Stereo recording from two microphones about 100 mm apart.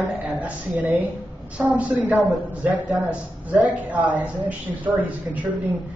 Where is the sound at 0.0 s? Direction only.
15° right (ahead or behind).